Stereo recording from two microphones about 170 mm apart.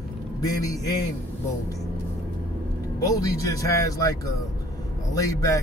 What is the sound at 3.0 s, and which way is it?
Speech, 20° left (ahead or behind).